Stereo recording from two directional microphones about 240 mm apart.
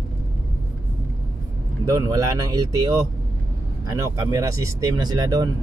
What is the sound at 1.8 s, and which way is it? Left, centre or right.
Speech, centre.